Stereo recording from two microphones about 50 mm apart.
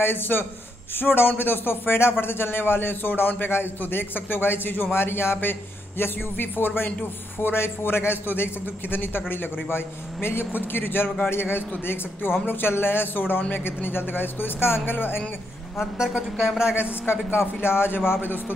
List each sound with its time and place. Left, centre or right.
0.0 s a man's voice: left
16.0 s speech: centre
16.7 s a man's voice: left